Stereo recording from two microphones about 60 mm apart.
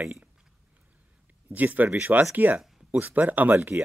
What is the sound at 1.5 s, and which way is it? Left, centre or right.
Speech, right.